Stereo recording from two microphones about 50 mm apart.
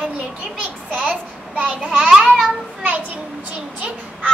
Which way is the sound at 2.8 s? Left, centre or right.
Right.